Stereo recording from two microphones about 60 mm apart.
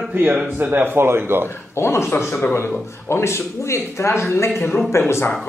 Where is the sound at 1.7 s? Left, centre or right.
Left.